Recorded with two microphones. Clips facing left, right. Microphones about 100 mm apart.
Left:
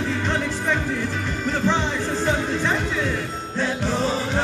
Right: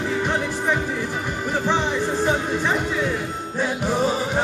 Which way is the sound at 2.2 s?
15° right (ahead or behind).